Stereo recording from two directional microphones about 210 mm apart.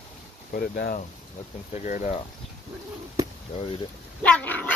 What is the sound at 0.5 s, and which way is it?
Speech, 45° left (ahead or behind).